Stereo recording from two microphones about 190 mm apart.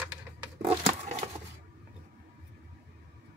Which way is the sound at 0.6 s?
35° right (ahead or behind).